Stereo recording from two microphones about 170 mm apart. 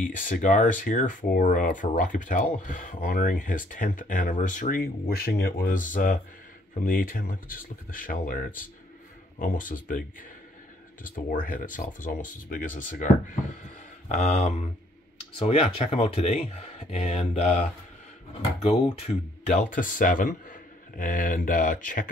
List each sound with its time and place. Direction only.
0.0 s speech: 50° left (ahead or behind)
11.1 s speech: 55° left (ahead or behind)
15.3 s speech: 30° left (ahead or behind); by 22.1 s 50° left (ahead or behind)